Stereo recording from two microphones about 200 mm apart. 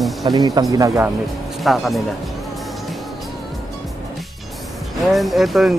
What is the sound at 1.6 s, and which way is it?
Speech, centre (ahead or behind).